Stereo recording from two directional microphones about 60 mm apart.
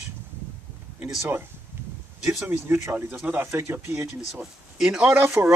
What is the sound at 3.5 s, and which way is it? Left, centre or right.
Speech, right.